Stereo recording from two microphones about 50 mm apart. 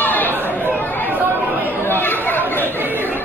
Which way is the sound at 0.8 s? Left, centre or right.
Left.